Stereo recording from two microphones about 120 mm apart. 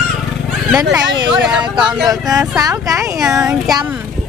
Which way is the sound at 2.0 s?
30° right (ahead or behind).